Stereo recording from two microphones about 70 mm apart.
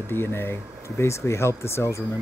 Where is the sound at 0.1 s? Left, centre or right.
Left.